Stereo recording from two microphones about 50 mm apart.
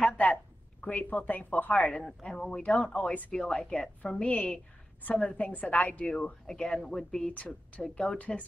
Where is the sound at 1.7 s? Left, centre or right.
Centre.